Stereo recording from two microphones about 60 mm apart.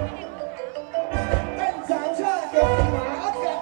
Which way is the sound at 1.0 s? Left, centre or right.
Centre.